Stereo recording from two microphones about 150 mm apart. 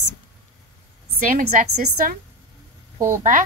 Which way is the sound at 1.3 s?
70° right (ahead or behind).